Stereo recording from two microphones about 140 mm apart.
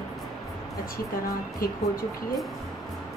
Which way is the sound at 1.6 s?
90° left.